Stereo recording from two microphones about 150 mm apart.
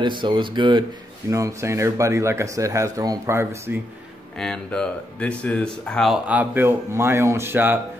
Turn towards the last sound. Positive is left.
turn(degrees=-15)  # may be behind; listen again after turning